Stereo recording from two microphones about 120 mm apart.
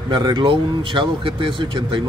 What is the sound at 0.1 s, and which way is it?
Speech, 35° right (ahead or behind).